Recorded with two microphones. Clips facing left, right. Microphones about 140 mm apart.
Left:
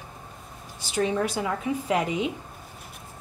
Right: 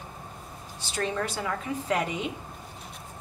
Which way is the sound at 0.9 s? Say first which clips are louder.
Left 5 dB; 10° left (ahead or behind).